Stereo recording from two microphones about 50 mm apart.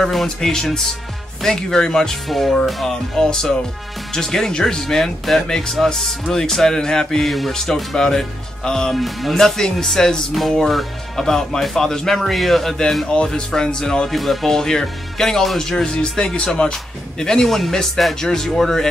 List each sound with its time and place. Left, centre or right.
0.0 s speech: centre
8.9 s speech: centre
14.1 s speech: centre
15.8 s speech: centre